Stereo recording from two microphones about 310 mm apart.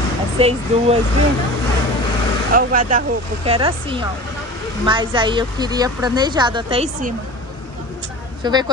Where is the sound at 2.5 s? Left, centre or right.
Right.